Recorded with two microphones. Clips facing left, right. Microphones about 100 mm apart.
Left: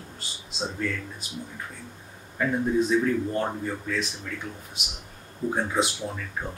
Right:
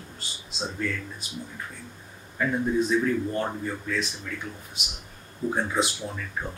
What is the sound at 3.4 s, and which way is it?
Speech, 15° left (ahead or behind).